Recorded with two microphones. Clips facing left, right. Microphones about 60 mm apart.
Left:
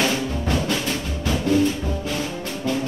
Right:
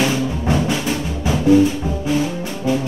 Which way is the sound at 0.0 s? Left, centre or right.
Centre.